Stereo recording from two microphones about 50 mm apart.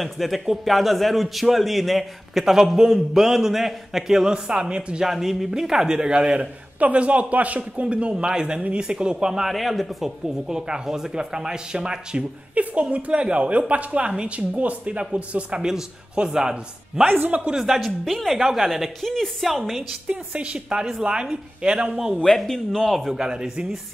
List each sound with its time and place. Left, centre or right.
0.0 s a man's voice: centre
4.3 s speech: centre
5.0 s speech: centre
9.5 s speech: centre
12.6 s a woman's voice: right
15.6 s speech: centre
17.1 s a man's voice: right
17.6 s a man's voice: centre
18.4 s a man's voice: centre
20.1 s speech: right
21.9 s a man's voice: centre
22.5 s speech: centre
22.8 s a man's voice: centre
23.1 s speech: centre